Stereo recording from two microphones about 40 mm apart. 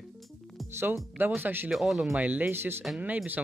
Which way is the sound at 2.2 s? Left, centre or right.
Right.